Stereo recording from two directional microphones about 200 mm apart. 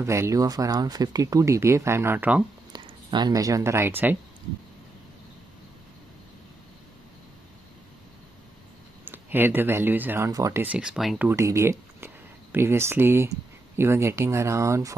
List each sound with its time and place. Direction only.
0.0 s speech: 15° right (ahead or behind)
2.7 s speech: 20° right (ahead or behind)
9.0 s speech: 10° right (ahead or behind)